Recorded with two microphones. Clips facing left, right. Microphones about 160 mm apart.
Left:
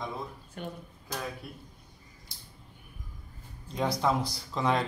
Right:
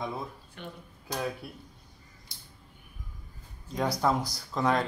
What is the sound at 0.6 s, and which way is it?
Speech, 45° left (ahead or behind).